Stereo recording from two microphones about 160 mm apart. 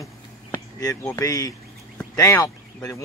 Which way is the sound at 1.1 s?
20° left (ahead or behind).